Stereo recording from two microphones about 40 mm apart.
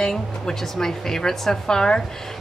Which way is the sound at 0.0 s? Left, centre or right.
Centre.